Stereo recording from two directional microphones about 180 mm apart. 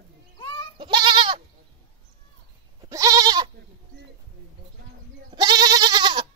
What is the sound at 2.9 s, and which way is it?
Goat, 20° right (ahead or behind).